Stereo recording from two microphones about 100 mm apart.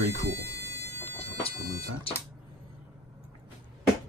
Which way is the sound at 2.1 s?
70° left (ahead or behind).